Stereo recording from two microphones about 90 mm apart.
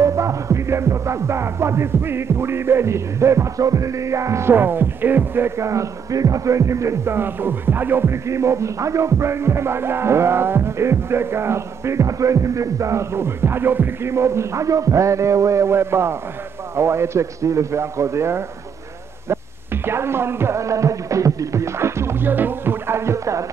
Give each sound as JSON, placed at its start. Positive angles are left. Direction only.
{"t": 0.0, "sound": "music", "side_deg": -35}
{"t": 19.2, "sound": "speech", "side_deg": -30}